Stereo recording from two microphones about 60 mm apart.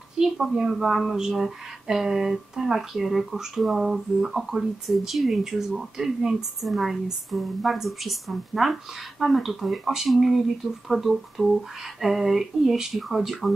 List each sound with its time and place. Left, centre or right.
0.2 s speech: centre